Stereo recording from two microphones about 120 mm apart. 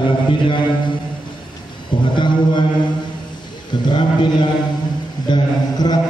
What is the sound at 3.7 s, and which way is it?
Speech, 40° left (ahead or behind).